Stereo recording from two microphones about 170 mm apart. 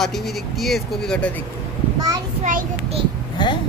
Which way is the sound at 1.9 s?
20° right (ahead or behind).